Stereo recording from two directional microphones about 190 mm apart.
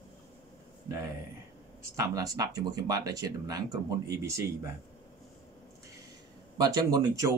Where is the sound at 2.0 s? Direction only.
20° right (ahead or behind).